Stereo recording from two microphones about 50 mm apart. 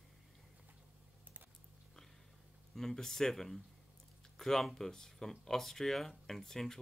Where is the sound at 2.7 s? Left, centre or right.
Centre.